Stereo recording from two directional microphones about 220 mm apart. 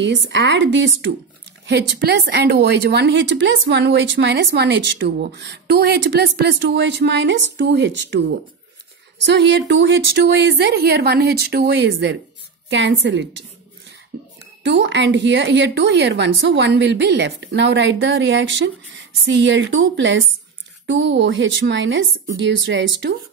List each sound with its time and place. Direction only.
0.0 s a woman's voice: 55° right (ahead or behind)